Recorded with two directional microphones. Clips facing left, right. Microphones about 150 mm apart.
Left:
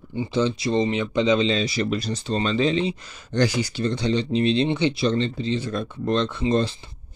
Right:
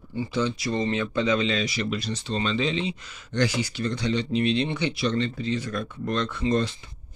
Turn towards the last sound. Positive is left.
turn(degrees=25)  # may be behind; listen again after turning